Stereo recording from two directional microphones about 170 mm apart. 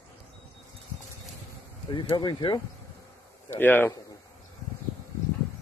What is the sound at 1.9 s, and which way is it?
Speech, 25° left (ahead or behind).